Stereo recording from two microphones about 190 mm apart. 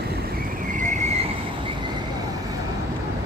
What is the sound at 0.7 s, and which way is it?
Vehicle, 40° right (ahead or behind).